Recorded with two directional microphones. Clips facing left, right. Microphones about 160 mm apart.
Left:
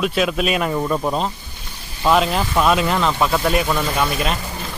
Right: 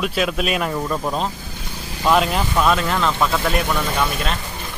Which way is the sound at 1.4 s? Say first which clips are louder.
Right 6 dB; 90° right.